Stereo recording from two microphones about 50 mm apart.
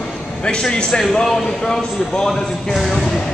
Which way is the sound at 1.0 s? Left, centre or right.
Centre.